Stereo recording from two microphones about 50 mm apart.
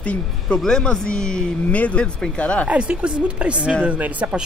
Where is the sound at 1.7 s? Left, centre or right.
Left.